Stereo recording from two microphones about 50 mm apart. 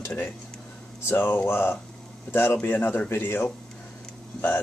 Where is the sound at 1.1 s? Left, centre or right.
Left.